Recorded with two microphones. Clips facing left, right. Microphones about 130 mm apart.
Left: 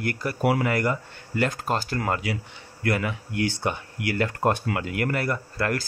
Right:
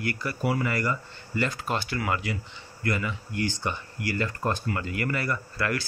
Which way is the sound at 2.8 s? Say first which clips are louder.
Left 3 dB; 60° left (ahead or behind).